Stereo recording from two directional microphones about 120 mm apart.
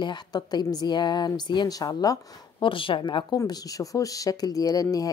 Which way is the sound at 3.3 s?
30° left (ahead or behind).